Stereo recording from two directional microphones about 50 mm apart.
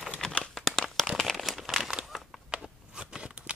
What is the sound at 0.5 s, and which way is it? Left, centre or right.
Crumpling, centre.